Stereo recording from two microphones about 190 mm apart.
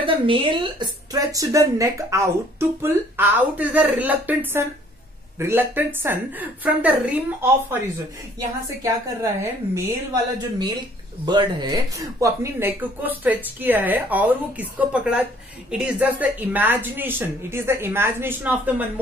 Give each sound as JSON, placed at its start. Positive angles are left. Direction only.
{"t": 0.0, "sound": "a woman's voice", "side_deg": -25}
{"t": 8.4, "sound": "a woman's voice", "side_deg": -15}